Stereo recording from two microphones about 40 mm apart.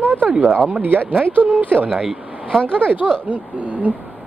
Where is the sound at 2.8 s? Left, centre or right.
Right.